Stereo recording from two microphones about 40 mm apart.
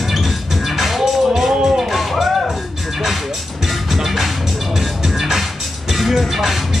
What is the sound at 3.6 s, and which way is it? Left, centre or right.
Music, centre.